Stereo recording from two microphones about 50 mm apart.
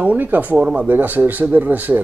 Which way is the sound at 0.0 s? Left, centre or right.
Right.